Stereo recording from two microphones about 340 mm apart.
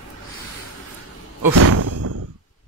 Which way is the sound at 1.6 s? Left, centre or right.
Right.